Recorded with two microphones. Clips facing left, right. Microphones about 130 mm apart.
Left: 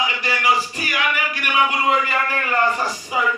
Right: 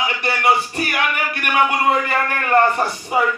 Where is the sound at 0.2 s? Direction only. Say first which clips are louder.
Right 4 dB; 60° right (ahead or behind).